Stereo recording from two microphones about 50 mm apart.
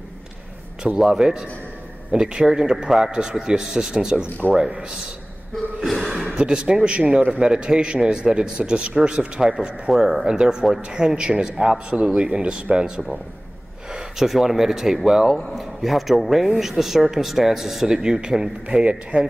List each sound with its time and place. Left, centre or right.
0.9 s a man's voice: centre
5.9 s a sound: centre
6.2 s a man's voice: centre
13.9 s speech: centre